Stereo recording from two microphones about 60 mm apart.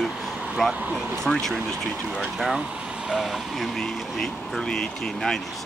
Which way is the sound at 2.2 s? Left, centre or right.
Centre.